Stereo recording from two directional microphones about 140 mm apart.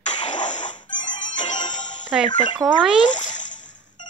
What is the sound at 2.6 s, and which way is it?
Speech, 25° right (ahead or behind).